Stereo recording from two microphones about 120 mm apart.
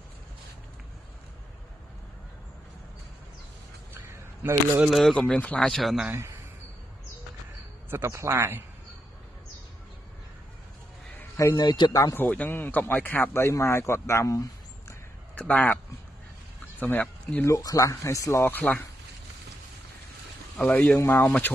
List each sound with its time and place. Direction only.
3.9 s single-lens reflex camera: 20° right (ahead or behind)
4.8 s speech: centre (ahead or behind)
7.9 s a man's voice: 20° right (ahead or behind)
11.3 s speech: 30° left (ahead or behind)
12.2 s speech: 15° left (ahead or behind)
15.3 s speech: 10° left (ahead or behind)
16.8 s speech: 15° left (ahead or behind)
17.5 s speech: 30° left (ahead or behind)
18.4 s speech: 15° left (ahead or behind)
20.5 s speech: 10° left (ahead or behind)